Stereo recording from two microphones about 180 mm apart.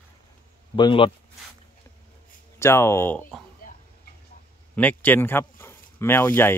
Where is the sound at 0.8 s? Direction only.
25° left (ahead or behind).